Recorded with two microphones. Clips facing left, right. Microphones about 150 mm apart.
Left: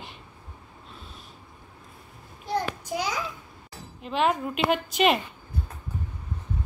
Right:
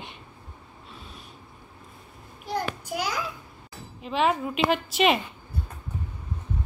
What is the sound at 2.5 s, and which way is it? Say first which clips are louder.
Child singing: left 1 dB; 10° right (ahead or behind).